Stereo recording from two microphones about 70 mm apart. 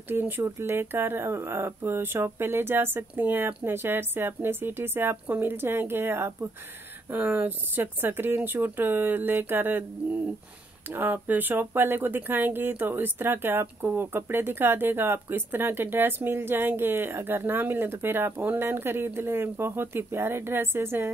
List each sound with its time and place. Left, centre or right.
0.4 s speech: right
7.1 s speech: right
11.0 s speech: right